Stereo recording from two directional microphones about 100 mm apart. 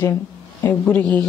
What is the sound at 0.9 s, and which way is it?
Speech, 15° left (ahead or behind).